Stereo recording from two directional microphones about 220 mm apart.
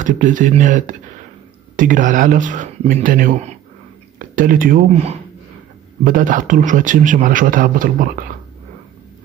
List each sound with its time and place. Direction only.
0.0 s a man's voice: 35° right (ahead or behind)